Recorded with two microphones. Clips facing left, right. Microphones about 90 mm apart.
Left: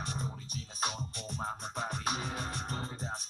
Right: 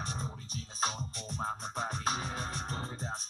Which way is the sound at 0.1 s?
25° right (ahead or behind).